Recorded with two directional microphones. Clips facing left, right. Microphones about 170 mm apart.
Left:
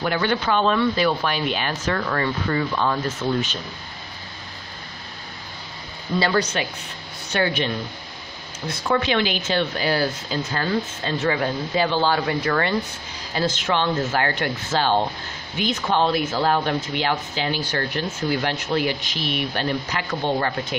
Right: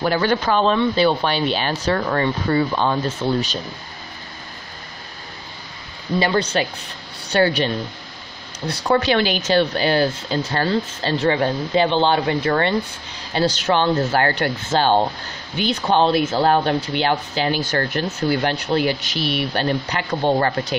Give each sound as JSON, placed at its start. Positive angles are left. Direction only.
{"t": 0.0, "sound": "speech", "side_deg": -40}
{"t": 6.3, "sound": "speech", "side_deg": -30}
{"t": 8.8, "sound": "speech", "side_deg": -40}
{"t": 17.4, "sound": "speech", "side_deg": -45}